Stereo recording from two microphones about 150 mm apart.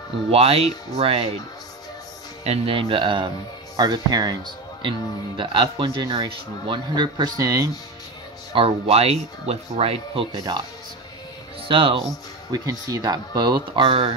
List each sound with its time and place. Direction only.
0.3 s speech: 40° right (ahead or behind)
2.4 s speech: 40° right (ahead or behind); by 7.7 s 25° right (ahead or behind)
8.5 s speech: 40° right (ahead or behind)
11.6 s speech: 35° right (ahead or behind)
12.4 s speech: 25° right (ahead or behind)